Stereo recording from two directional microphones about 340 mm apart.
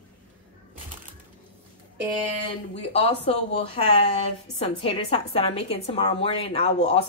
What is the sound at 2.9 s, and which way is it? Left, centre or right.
A woman's voice, centre.